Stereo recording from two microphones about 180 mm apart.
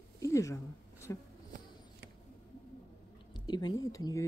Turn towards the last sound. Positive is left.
turn(degrees=20)  # may be behind; listen again after turning